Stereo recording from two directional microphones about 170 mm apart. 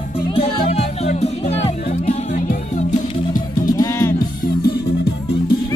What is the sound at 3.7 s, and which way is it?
Music, 20° left (ahead or behind).